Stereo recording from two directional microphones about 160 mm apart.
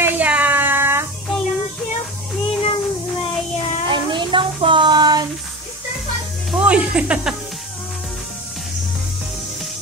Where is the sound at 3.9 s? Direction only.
30° right (ahead or behind).